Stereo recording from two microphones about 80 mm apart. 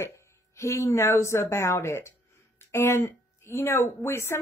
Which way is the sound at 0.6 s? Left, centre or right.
Left.